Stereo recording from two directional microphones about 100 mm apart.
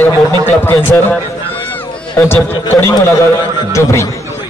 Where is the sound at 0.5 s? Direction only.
20° left (ahead or behind).